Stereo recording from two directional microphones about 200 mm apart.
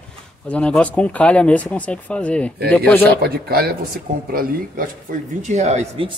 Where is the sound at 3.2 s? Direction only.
50° right (ahead or behind).